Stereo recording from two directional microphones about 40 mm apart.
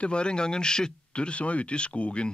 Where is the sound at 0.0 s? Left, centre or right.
Left.